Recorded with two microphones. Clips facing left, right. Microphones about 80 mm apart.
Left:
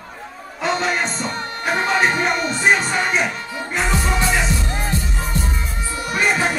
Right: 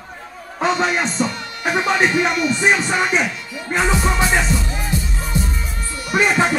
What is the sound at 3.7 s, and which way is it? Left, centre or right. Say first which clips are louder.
Music: right 3 dB; centre.